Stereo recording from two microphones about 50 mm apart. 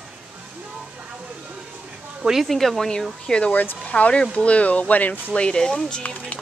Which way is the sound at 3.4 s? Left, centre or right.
Left.